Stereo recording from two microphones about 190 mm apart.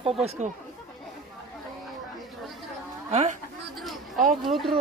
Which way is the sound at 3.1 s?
35° right (ahead or behind).